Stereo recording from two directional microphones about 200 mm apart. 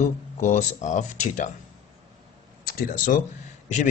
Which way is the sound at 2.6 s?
45° left (ahead or behind).